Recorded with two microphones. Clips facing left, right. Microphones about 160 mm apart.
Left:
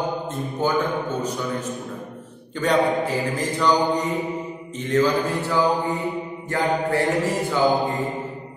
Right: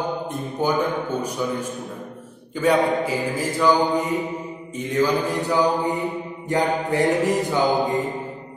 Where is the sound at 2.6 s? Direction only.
10° right (ahead or behind).